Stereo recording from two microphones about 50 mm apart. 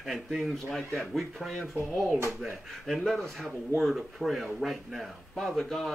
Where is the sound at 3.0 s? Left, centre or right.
Centre.